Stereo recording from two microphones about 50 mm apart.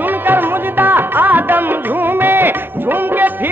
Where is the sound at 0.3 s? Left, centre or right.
Right.